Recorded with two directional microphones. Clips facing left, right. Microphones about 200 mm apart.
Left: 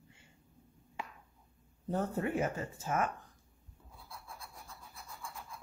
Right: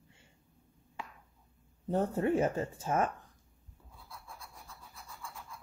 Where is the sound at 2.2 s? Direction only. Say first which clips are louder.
Right 5 dB; 30° right (ahead or behind).